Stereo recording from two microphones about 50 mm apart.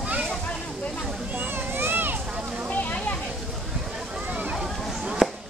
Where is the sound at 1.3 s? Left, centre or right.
Right.